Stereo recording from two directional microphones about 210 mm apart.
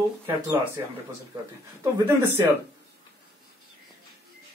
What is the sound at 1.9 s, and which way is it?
Speech, 10° right (ahead or behind).